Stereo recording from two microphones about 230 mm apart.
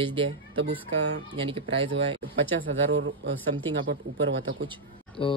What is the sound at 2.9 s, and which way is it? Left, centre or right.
Speech, right.